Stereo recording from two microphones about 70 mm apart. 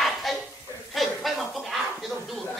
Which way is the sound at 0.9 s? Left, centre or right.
Centre.